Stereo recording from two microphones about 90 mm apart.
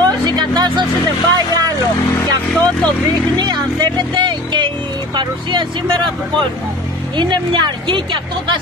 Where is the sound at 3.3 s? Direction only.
50° right (ahead or behind).